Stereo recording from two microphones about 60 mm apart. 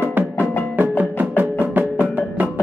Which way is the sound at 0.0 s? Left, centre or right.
Right.